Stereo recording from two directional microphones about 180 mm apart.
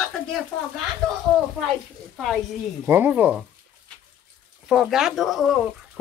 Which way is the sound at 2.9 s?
10° right (ahead or behind).